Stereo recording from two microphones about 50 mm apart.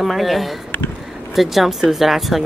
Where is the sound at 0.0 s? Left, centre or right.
Centre.